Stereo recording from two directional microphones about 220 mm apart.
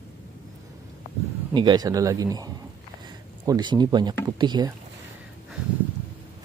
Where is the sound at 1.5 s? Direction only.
20° right (ahead or behind).